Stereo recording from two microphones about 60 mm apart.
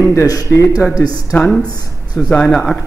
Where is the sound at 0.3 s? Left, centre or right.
Left.